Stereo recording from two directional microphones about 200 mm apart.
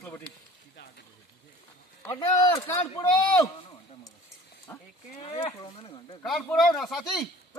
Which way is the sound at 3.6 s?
25° left (ahead or behind).